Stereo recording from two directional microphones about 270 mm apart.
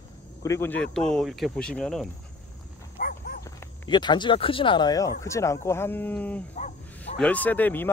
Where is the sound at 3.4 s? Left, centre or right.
Centre.